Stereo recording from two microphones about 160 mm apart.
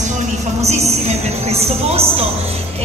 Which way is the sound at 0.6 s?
40° right (ahead or behind).